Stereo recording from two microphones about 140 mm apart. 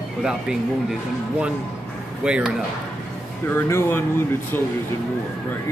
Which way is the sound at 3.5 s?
15° left (ahead or behind).